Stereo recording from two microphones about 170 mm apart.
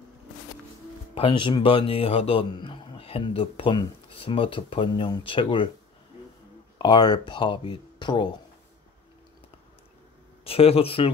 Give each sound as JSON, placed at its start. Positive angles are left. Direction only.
{"t": 1.1, "sound": "a man's voice", "side_deg": 30}
{"t": 6.8, "sound": "speech", "side_deg": 25}
{"t": 10.4, "sound": "a man's voice", "side_deg": 35}